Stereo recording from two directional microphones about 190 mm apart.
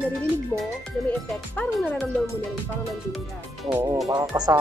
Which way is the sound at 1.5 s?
5° left (ahead or behind).